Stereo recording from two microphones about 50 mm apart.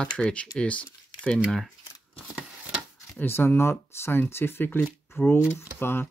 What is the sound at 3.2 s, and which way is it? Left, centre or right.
Speech, left.